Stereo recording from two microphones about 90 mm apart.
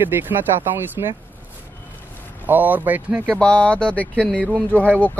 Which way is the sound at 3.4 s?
15° left (ahead or behind).